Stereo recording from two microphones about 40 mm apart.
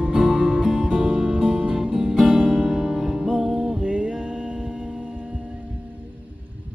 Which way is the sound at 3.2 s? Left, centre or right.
Right.